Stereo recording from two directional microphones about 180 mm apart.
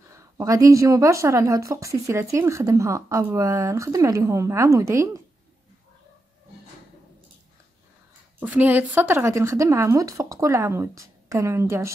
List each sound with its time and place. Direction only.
0.1 s speech: 15° right (ahead or behind)
8.4 s speech: 10° right (ahead or behind)